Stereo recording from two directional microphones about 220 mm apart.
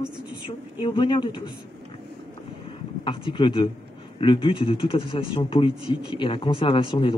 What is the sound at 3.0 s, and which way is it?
Speech, 25° left (ahead or behind).